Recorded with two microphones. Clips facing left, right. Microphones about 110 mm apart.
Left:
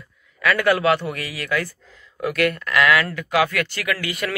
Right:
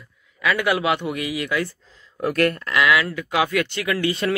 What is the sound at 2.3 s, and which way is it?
Speech, 40° right (ahead or behind).